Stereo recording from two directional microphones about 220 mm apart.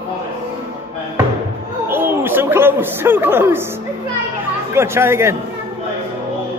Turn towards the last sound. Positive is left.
turn(degrees=-10)  # may be behind; listen again after turning